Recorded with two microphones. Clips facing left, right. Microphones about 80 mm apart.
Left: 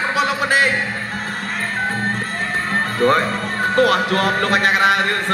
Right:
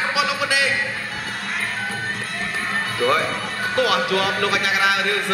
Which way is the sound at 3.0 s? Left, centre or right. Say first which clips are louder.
Left 4 dB; left.